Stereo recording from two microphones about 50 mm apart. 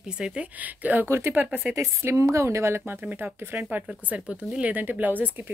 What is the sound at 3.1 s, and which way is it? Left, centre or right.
Speech, right.